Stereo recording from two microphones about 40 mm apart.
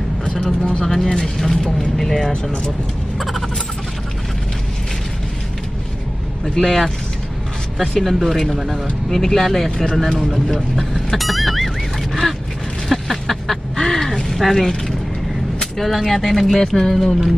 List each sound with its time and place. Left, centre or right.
0.3 s speech: centre
6.5 s speech: centre
7.9 s speech: centre
10.1 s speech: centre
11.1 s a sound: centre
15.8 s speech: centre